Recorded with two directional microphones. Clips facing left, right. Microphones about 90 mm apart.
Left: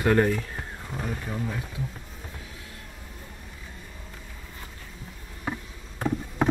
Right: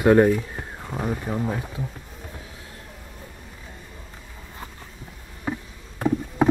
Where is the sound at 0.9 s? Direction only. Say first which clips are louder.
Right 6 dB; 35° right (ahead or behind).